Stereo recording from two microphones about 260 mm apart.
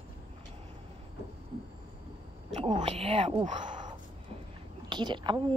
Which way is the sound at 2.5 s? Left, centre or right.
Right.